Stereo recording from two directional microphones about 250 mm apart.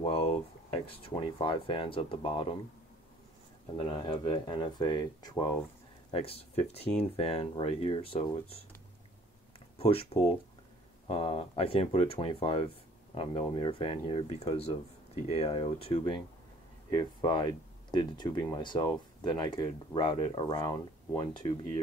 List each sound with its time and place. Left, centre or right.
0.0 s speech: left
3.6 s speech: left
9.8 s speech: left